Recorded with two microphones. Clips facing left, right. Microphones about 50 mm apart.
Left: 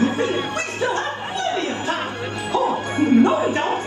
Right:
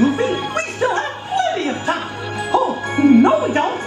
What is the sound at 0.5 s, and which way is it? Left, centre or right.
Chuckle, right.